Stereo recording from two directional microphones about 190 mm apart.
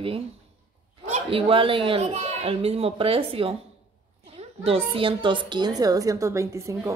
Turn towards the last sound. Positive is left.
turn(degrees=-15)  # may be behind; listen again after turning